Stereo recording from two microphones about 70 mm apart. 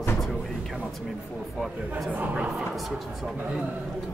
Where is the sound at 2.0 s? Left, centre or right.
Right.